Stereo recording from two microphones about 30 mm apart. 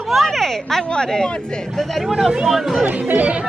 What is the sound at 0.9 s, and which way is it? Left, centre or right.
Speech, left.